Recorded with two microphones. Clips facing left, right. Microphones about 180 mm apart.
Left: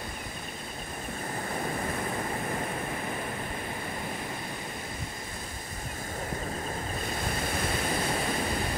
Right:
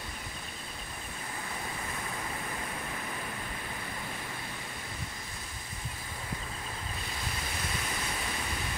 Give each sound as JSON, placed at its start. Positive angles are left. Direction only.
{"t": 7.1, "sound": "waves", "side_deg": 50}